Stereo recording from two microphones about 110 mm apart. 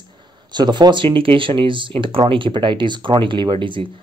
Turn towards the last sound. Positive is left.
turn(degrees=-50)  # may be behind; listen again after turning